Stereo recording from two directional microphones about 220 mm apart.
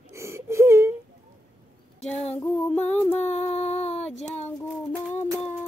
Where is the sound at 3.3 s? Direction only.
30° left (ahead or behind).